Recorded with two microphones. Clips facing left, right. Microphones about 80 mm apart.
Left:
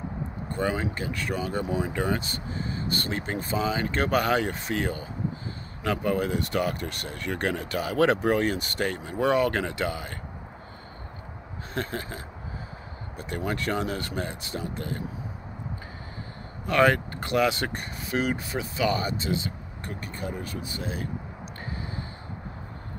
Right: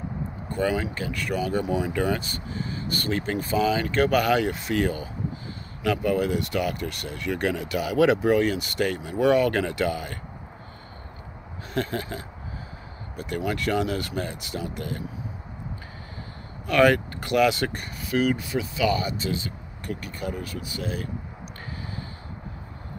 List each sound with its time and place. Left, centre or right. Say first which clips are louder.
0.5 s speech: right 3 dB; left
11.7 s speech: right 4 dB; left
13.2 s speech: right 3 dB; left
16.6 s speech: right 2 dB; left
19.2 s speech: even; left